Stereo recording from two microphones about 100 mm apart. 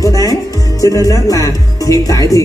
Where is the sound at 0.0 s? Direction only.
35° left (ahead or behind).